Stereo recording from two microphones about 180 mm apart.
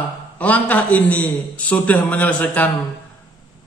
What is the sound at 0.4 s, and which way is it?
Speech, 10° left (ahead or behind).